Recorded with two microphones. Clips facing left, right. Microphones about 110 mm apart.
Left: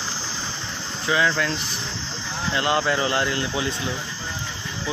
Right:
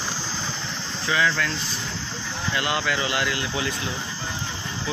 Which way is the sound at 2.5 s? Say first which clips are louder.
Left 4 dB; 30° left (ahead or behind).